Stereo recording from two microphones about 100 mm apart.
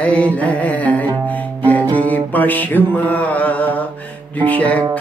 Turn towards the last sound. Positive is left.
turn(degrees=15)  # may be behind; listen again after turning